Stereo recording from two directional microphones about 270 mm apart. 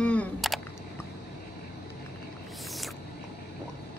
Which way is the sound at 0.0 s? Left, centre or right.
Centre.